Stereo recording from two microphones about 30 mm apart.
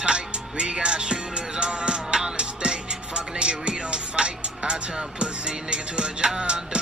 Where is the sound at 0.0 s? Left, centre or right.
Right.